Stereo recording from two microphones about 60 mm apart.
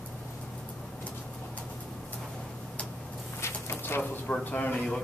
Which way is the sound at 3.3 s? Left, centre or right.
Left.